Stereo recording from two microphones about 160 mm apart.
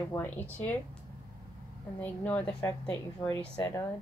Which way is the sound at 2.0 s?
10° left (ahead or behind).